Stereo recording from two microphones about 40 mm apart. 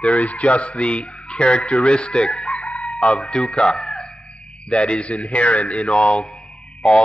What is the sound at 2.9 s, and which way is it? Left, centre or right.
Speech, centre.